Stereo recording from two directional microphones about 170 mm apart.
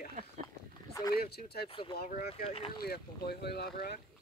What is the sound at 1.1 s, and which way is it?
Speech, 70° left (ahead or behind).